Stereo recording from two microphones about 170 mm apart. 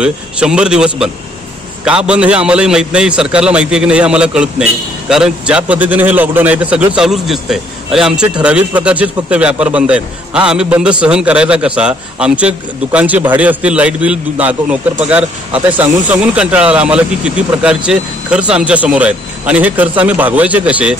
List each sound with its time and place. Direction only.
0.0 s a man's voice: 5° right (ahead or behind)